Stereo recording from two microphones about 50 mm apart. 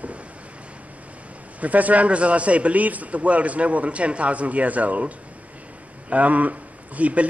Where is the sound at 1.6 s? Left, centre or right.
Right.